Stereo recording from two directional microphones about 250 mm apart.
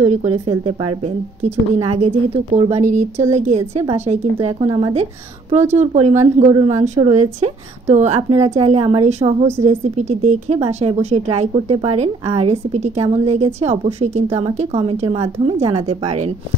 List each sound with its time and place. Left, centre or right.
0.5 s a woman's voice: right